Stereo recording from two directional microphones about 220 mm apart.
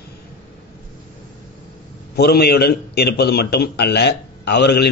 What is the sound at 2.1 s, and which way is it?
A man's voice, 45° left (ahead or behind).